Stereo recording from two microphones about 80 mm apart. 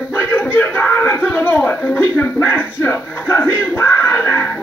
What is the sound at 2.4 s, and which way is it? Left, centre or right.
Music, left.